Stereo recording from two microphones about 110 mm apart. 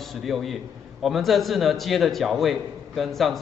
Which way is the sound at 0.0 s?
Centre (ahead or behind).